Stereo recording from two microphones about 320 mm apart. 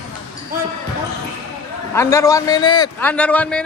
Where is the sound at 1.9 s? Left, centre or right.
Centre.